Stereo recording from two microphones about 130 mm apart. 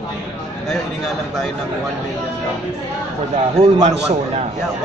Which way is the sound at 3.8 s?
60° right (ahead or behind).